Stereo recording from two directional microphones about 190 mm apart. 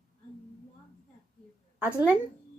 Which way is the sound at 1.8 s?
10° right (ahead or behind).